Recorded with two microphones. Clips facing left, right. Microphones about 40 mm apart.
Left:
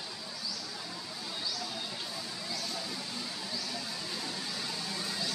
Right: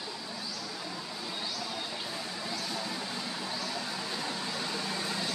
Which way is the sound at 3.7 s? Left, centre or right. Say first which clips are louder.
Right 3 dB; right.